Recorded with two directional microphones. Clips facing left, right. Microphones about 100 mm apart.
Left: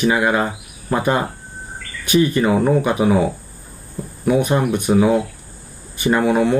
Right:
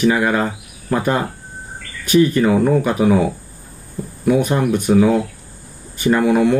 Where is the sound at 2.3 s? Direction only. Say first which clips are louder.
Right 1 dB; 20° left (ahead or behind).